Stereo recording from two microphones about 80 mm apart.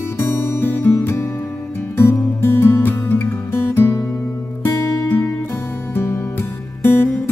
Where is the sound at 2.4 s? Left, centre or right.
Left.